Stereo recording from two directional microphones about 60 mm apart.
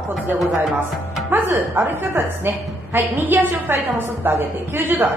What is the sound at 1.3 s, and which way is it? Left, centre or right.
Speech, right.